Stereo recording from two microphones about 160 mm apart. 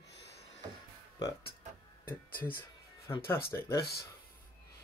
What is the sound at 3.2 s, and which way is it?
Speech, 15° left (ahead or behind).